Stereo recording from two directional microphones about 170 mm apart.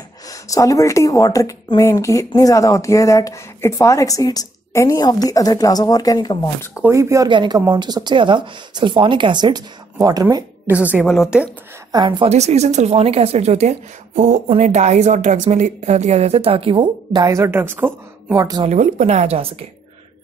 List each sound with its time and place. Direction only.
0.3 s speech: 20° left (ahead or behind)
6.7 s speech: 15° right (ahead or behind)
10.7 s speech: 10° right (ahead or behind)
11.9 s speech: 25° right (ahead or behind)
12.3 s a woman's voice: 40° right (ahead or behind); by 18.7 s 20° right (ahead or behind)
18.7 s a woman's voice: 45° right (ahead or behind)